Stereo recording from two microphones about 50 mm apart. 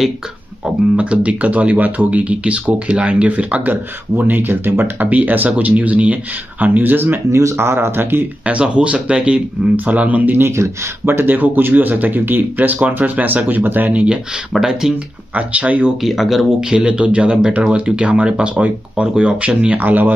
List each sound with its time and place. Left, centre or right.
0.9 s speech: right
5.0 s speech: right
7.2 s speech: right
8.5 s speech: right
10.4 s speech: right
11.1 s speech: right
14.5 s speech: centre
15.3 s speech: right
16.0 s speech: centre
16.6 s speech: right